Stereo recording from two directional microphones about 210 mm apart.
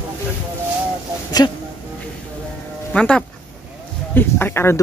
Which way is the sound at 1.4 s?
15° left (ahead or behind).